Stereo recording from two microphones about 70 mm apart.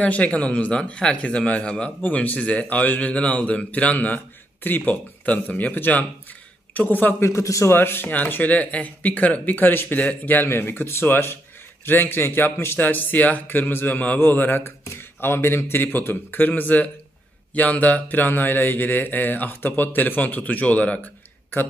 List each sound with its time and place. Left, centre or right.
0.0 s a man's voice: centre
7.2 s a man's voice: left
7.7 s a man's voice: left